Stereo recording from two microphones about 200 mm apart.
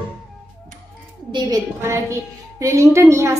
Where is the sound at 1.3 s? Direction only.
15° right (ahead or behind).